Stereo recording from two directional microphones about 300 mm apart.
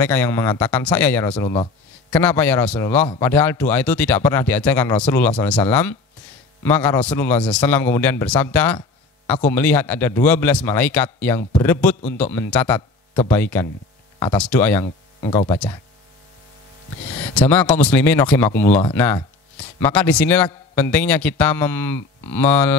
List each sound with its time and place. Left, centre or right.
0.0 s a man's voice: centre
15.2 s speech: centre
17.3 s a man's voice: centre